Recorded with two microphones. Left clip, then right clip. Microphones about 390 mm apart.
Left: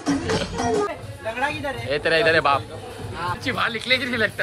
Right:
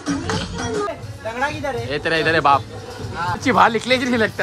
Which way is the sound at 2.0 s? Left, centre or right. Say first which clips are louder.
Even; centre.